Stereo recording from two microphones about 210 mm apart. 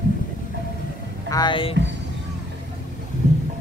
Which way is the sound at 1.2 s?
20° left (ahead or behind).